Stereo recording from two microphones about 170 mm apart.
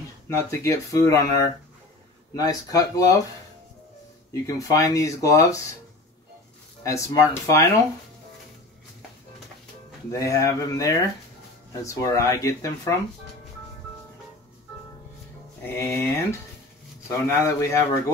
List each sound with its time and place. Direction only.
0.5 s speech: 15° left (ahead or behind)
4.3 s speech: 20° left (ahead or behind)
6.8 s speech: 15° left (ahead or behind)
10.1 s speech: 20° left (ahead or behind)
15.6 s speech: 15° left (ahead or behind)